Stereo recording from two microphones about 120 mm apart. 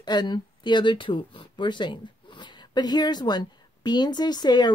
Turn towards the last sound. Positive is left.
turn(degrees=35)  # may be behind; listen again after turning